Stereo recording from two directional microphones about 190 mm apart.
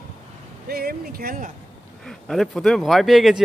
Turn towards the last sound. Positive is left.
turn(degrees=0)  # may be behind; listen again after turning